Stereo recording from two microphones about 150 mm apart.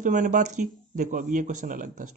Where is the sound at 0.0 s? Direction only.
60° right (ahead or behind).